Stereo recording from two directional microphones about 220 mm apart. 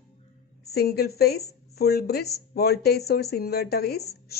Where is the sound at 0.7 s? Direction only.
45° left (ahead or behind).